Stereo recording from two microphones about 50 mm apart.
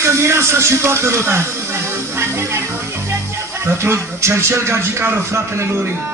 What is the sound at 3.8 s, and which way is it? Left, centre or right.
Speech, right.